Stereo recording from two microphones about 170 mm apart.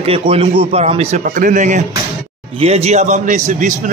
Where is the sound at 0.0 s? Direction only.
35° right (ahead or behind).